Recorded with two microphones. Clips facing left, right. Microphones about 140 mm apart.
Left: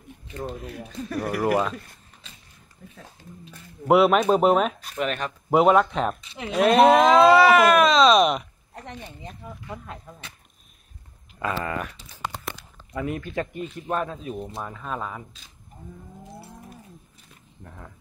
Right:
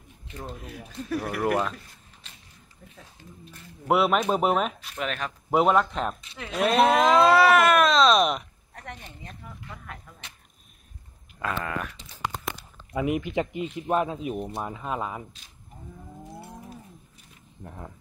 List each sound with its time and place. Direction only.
0.6 s speech: centre (ahead or behind)
2.8 s speech: 5° left (ahead or behind)
11.3 s speech: 5° left (ahead or behind)
12.9 s speech: 15° right (ahead or behind)
17.6 s speech: 20° right (ahead or behind)